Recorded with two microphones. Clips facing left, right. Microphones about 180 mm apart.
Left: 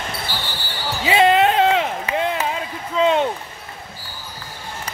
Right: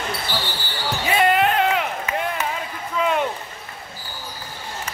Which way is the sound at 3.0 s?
25° left (ahead or behind).